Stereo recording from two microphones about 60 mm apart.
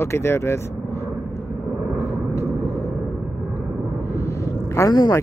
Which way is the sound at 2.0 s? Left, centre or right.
Left.